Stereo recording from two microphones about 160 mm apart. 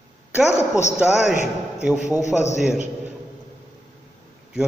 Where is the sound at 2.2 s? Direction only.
45° left (ahead or behind).